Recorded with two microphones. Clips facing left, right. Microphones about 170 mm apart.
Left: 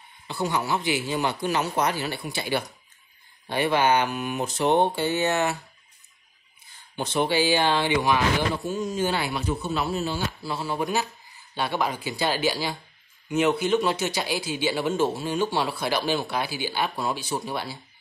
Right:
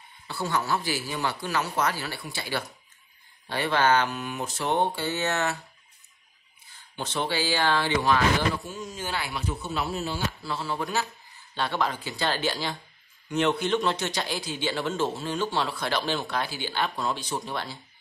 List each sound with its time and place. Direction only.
0.3 s a man's voice: 15° left (ahead or behind)
7.0 s a man's voice: 15° left (ahead or behind)